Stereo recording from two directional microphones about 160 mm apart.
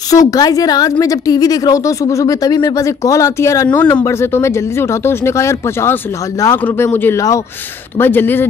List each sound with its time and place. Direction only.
0.1 s a woman's voice: 20° left (ahead or behind)